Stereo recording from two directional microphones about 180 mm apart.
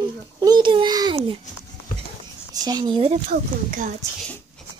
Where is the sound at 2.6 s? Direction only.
25° right (ahead or behind).